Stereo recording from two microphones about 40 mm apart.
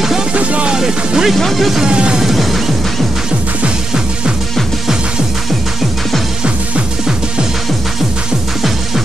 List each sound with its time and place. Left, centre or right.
0.3 s music: right
0.7 s speech: centre
1.3 s speech: centre
1.9 s music: right
2.1 s music: centre